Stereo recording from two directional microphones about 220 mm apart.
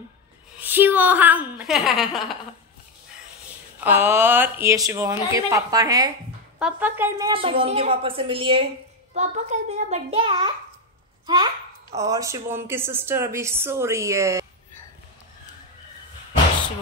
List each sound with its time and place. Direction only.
0.6 s speech: 10° right (ahead or behind)
3.8 s a woman's voice: 10° right (ahead or behind)
12.0 s speech: 15° right (ahead or behind)